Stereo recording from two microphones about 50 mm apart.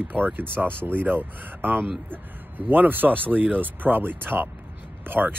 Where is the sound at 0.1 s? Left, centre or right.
Right.